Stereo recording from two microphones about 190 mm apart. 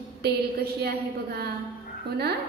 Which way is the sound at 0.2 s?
55° right (ahead or behind).